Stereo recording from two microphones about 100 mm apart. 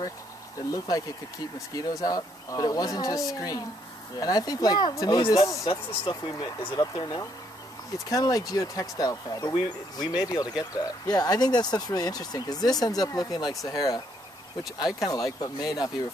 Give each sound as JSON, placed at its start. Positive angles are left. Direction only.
{"t": 0.7, "sound": "speech", "side_deg": 40}
{"t": 5.7, "sound": "speech", "side_deg": 60}
{"t": 6.7, "sound": "speech", "side_deg": 45}